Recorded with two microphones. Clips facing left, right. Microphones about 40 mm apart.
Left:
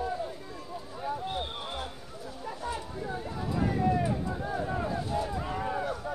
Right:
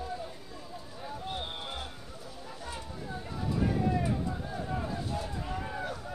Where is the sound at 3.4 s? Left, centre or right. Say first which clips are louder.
Left 1 dB; centre.